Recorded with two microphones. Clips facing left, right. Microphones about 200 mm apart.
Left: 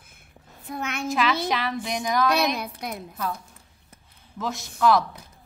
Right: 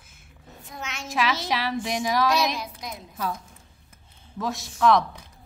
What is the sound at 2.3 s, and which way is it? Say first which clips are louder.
Speech: left 1 dB; 60° left (ahead or behind).